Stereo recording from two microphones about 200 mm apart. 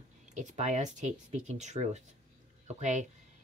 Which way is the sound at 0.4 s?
35° right (ahead or behind).